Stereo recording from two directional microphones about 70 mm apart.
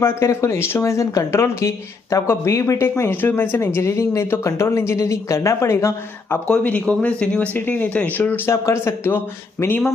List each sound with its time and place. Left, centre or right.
0.0 s speech: left
2.9 s speech: left
6.4 s speech: centre
8.5 s speech: left